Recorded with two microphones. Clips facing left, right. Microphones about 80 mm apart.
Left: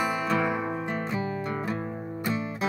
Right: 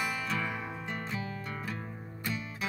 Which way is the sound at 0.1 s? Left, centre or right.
Centre.